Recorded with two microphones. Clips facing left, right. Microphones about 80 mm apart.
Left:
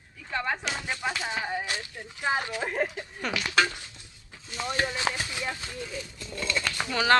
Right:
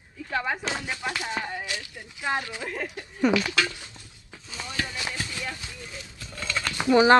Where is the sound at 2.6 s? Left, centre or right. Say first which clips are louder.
Left 4 dB; left.